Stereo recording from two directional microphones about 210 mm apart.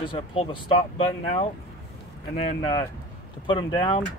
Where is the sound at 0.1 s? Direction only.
25° left (ahead or behind).